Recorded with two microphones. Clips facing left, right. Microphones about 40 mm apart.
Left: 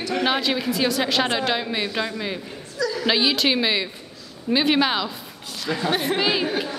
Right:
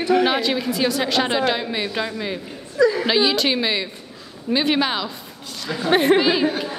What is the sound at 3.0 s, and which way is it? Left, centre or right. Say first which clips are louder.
A woman's voice: right 2 dB; centre.